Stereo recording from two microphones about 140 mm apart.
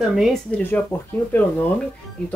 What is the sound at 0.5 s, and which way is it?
Speech, 10° left (ahead or behind).